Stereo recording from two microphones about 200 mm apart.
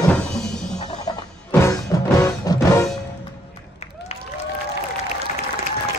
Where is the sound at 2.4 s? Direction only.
15° left (ahead or behind).